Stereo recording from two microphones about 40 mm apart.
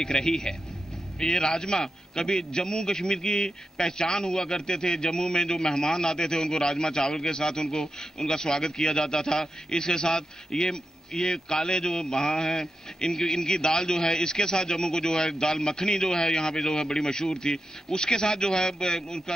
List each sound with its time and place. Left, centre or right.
0.0 s a man's voice: centre